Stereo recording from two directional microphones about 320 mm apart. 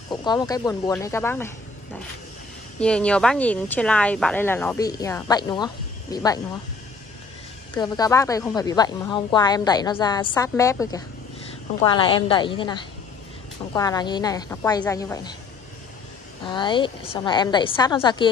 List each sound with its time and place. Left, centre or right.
0.1 s speech: centre
2.8 s speech: centre
7.7 s speech: centre
16.4 s speech: centre